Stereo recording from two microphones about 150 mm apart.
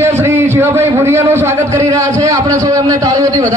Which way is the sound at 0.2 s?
15° right (ahead or behind).